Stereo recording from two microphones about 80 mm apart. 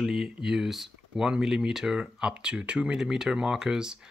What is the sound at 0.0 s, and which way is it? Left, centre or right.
Speech, centre.